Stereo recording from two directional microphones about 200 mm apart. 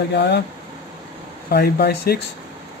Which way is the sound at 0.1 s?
55° left (ahead or behind).